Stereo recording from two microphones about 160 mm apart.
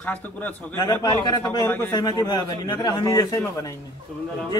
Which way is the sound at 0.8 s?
25° left (ahead or behind).